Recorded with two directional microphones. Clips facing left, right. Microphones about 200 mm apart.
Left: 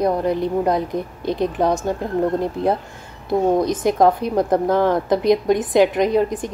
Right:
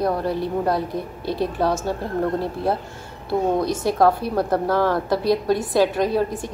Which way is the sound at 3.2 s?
20° left (ahead or behind).